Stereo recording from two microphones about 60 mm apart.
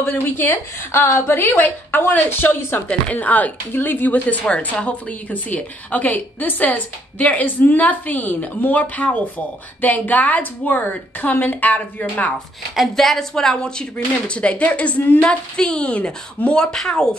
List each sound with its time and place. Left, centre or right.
0.2 s a woman's voice: left
2.9 s a woman's voice: left
12.7 s a woman's voice: centre; by 15.2 s left
15.2 s a woman's voice: centre
16.7 s speech: centre